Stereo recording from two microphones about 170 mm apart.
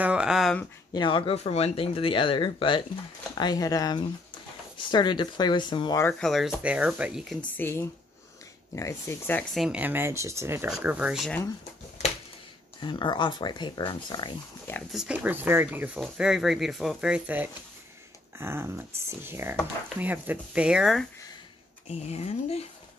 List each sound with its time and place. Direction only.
0.0 s a sound: 5° right (ahead or behind)
0.9 s speech: 30° left (ahead or behind)
6.1 s speech: centre (ahead or behind)
7.5 s speech: 15° left (ahead or behind); by 11.3 s 5° right (ahead or behind)
12.8 s speech: 25° left (ahead or behind)
14.9 s speech: 5° right (ahead or behind)
21.8 s speech: 40° left (ahead or behind)